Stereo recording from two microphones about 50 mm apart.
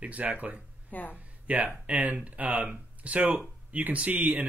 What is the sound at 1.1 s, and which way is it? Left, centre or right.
Speech, right.